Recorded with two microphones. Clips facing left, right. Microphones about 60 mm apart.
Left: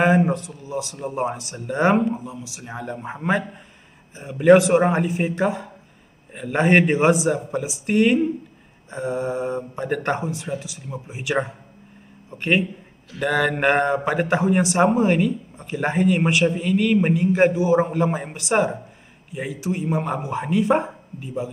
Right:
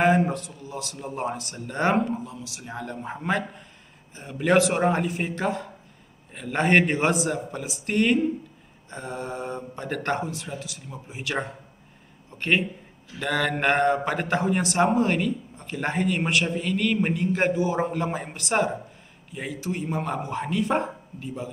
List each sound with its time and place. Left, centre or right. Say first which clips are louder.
0.0 s a man's voice: left 3 dB; centre
15.5 s a sound: left 5 dB; centre
15.9 s a man's voice: left 5 dB; centre